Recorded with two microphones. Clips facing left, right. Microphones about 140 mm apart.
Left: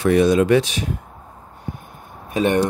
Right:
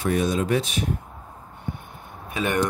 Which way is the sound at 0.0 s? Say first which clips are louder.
Left 8 dB; 80° left.